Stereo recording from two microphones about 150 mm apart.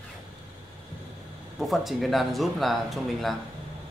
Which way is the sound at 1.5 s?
Centre (ahead or behind).